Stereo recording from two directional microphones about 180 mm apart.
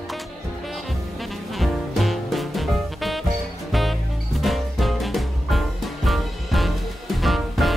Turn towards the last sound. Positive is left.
turn(degrees=0)  # may be behind; listen again after turning